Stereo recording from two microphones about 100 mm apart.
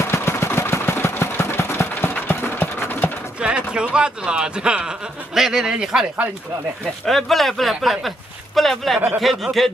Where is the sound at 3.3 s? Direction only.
10° right (ahead or behind).